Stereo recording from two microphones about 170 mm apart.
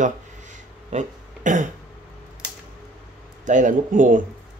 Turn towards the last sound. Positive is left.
turn(degrees=-50)  # may be behind; listen again after turning